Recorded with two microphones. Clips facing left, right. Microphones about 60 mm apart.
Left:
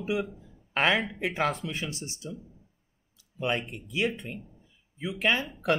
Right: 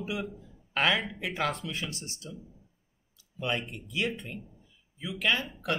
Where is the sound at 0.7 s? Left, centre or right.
Left.